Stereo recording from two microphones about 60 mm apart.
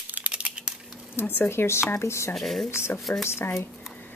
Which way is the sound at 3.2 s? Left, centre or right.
Left.